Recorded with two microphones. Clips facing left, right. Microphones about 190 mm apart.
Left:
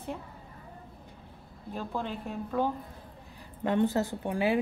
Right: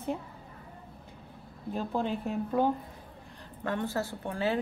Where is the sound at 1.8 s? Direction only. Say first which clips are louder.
Right 4 dB; 15° right (ahead or behind).